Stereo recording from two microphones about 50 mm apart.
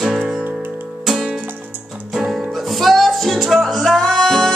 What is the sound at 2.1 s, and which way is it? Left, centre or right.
Music, centre.